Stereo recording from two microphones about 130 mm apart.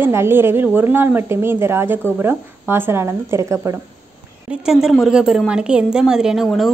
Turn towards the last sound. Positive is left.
turn(degrees=0)  # may be behind; listen again after turning